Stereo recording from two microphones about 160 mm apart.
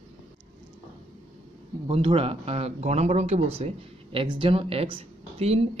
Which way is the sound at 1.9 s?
35° right (ahead or behind).